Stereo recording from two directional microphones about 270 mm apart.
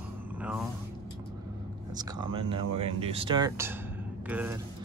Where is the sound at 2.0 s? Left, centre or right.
Centre.